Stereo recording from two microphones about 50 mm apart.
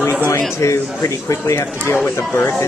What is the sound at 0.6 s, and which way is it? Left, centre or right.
Speech, left.